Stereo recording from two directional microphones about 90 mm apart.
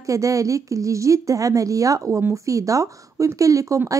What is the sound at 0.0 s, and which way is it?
Speech, 35° right (ahead or behind).